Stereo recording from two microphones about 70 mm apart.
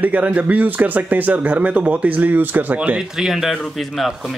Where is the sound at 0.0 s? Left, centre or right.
Right.